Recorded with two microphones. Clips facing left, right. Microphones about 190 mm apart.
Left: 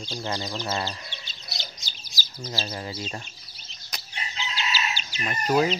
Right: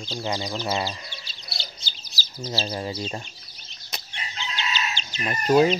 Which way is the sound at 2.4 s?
25° right (ahead or behind).